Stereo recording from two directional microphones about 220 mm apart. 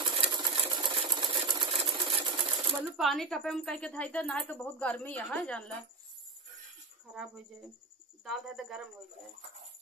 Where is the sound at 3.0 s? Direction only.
Centre (ahead or behind).